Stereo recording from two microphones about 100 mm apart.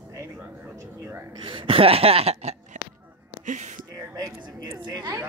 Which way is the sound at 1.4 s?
55° right (ahead or behind).